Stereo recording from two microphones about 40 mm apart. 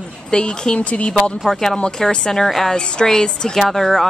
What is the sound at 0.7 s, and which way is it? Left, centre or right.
Speech, left.